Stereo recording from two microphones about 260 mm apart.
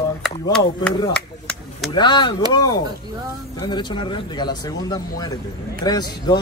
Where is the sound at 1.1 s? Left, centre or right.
Centre.